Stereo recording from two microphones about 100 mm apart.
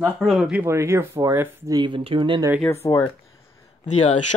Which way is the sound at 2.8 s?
40° left (ahead or behind).